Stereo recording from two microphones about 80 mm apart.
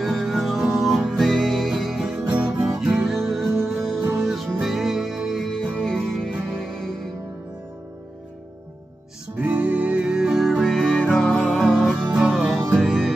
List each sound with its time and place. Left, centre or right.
0.0 s music: centre
2.3 s music: centre
9.4 s music: centre
10.6 s music: centre
12.1 s music: centre